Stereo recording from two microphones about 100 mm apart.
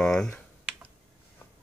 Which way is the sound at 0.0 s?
5° left (ahead or behind).